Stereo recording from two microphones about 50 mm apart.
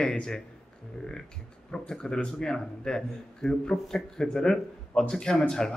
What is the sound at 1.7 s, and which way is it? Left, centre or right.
A man's voice, centre.